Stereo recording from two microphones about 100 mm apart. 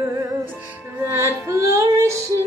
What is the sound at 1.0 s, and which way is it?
Music, 25° right (ahead or behind).